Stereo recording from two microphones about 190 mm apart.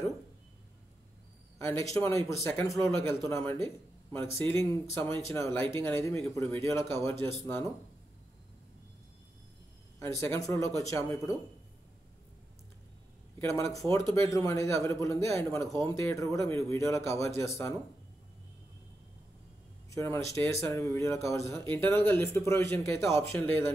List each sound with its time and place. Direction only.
1.7 s speech: 15° left (ahead or behind)
9.9 s speech: 15° left (ahead or behind)
13.4 s speech: 15° left (ahead or behind)
19.9 s speech: 15° left (ahead or behind)